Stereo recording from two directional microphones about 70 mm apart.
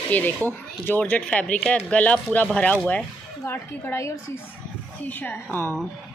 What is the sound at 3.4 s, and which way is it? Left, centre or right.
Speech, left.